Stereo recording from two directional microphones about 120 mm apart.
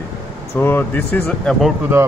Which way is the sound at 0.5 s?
20° left (ahead or behind).